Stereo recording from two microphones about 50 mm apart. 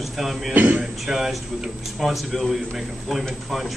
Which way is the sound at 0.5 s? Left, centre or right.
Right.